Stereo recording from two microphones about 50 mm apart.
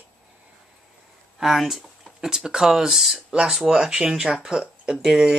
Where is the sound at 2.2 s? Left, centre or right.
Centre.